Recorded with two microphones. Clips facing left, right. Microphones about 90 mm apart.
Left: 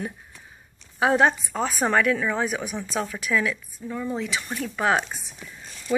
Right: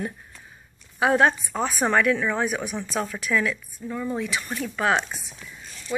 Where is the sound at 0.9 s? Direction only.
25° left (ahead or behind).